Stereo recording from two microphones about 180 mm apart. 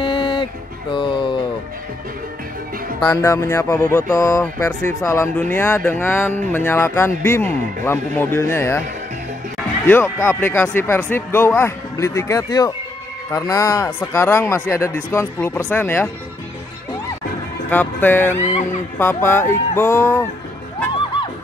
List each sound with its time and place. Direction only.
0.0 s a sound: 25° left (ahead or behind)
3.2 s speech: 15° left (ahead or behind)
10.1 s speech: 15° left (ahead or behind)
17.6 s speech: 10° left (ahead or behind)
18.4 s speech: 35° left (ahead or behind)
18.9 s speech: 15° left (ahead or behind)